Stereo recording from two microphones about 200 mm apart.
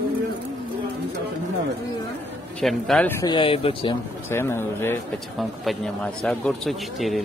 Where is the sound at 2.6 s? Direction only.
5° left (ahead or behind).